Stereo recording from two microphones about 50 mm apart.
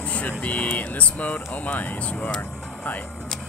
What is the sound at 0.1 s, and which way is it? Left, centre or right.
Speech, left.